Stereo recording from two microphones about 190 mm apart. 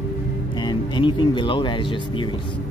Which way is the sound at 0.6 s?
25° left (ahead or behind).